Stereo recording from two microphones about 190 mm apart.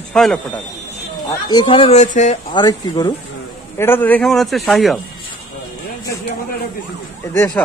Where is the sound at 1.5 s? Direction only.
25° left (ahead or behind).